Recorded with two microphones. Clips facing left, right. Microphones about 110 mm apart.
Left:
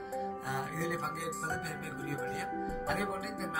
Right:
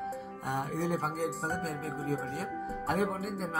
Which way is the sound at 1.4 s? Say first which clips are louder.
Right 4 dB; 35° right (ahead or behind).